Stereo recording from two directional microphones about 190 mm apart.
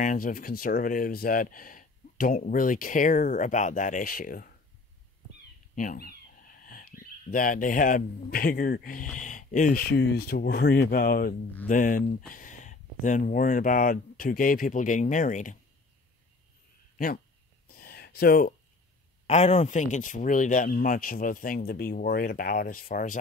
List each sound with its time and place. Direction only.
0.0 s speech: 45° left (ahead or behind)
5.8 s speech: 50° left (ahead or behind)
17.6 s a sound: 50° left (ahead or behind)
19.2 s speech: 35° left (ahead or behind)